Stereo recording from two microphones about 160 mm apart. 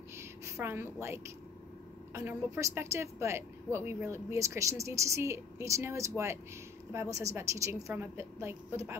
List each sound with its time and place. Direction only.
0.2 s a woman's voice: 15° right (ahead or behind)